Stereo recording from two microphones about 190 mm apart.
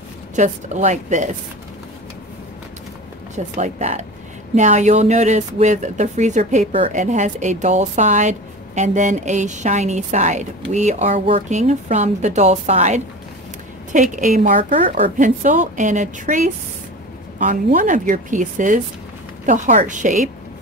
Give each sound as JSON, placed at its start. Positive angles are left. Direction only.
{"t": 0.4, "sound": "speech", "side_deg": -40}
{"t": 3.3, "sound": "speech", "side_deg": -40}